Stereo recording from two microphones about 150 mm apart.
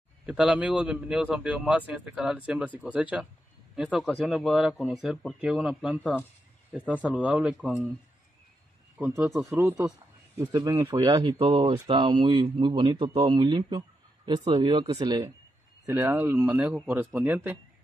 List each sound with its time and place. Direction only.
0.3 s a man's voice: 10° right (ahead or behind)
8.9 s a man's voice: 10° right (ahead or behind)
10.4 s speech: 25° right (ahead or behind)
15.8 s a man's voice: 15° right (ahead or behind)